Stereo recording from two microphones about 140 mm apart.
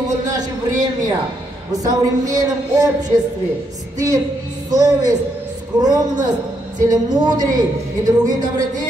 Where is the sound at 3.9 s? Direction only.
25° right (ahead or behind).